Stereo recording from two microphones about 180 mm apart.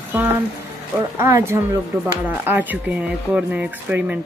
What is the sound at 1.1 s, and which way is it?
Speech, 15° right (ahead or behind).